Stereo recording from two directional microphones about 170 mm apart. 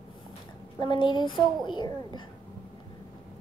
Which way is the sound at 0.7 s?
25° left (ahead or behind).